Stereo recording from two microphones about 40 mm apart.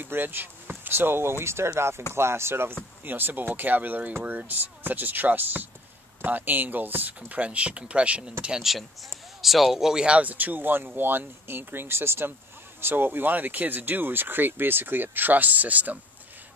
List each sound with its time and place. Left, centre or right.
0.0 s speech: right
3.0 s speech: right
7.2 s speech: right
9.4 s speech: centre
10.0 s speech: right
10.3 s speech: right
12.8 s speech: right